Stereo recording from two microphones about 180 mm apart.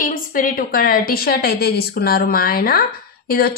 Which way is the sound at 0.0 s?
50° left (ahead or behind).